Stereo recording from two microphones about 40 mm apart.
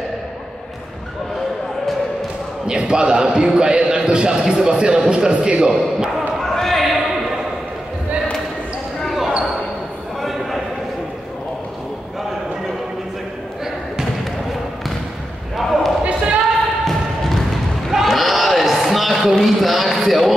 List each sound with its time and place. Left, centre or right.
2.6 s a man's voice: right
6.1 s basketball bounce: centre
9.0 s basketball bounce: centre
10.2 s a sound: centre
15.5 s basketball bounce: centre
16.0 s basketball bounce: right
16.8 s thump: centre
17.9 s a sound: centre